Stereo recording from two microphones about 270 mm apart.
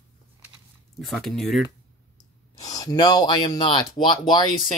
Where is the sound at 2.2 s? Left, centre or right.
Centre.